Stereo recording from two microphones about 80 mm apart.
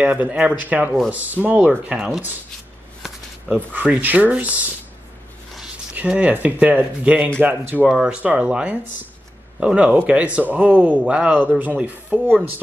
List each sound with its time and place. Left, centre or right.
0.0 s speech: centre
3.4 s speech: right
5.9 s speech: centre
7.8 s speech: centre